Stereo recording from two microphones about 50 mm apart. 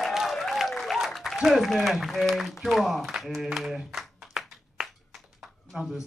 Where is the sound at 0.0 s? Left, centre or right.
Centre.